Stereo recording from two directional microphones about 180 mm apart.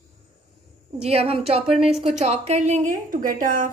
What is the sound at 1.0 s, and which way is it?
A woman's voice, 35° right (ahead or behind).